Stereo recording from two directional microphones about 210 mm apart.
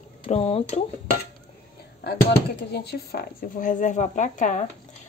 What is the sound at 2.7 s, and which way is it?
Speech, 50° left (ahead or behind).